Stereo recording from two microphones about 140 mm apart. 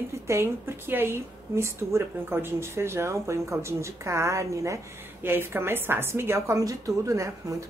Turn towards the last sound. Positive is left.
turn(degrees=-20)  # may be behind; listen again after turning